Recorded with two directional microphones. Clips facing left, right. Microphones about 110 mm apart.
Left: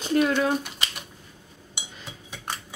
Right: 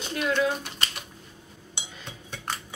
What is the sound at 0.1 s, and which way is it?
Speech, 40° left (ahead or behind).